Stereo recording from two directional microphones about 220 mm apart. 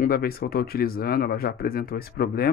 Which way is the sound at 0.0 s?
45° left (ahead or behind).